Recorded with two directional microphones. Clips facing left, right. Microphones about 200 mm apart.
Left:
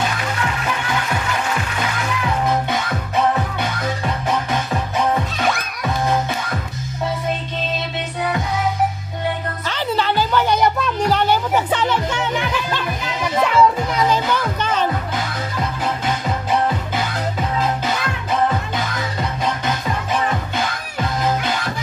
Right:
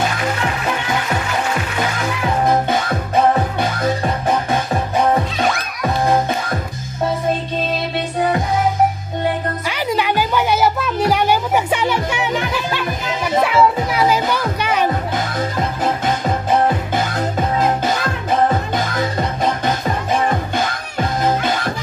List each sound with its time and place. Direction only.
4.0 s music: 30° right (ahead or behind)
9.7 s music: 10° right (ahead or behind)
15.8 s music: 45° right (ahead or behind)